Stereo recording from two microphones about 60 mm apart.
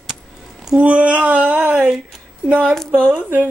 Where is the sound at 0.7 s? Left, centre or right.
Right.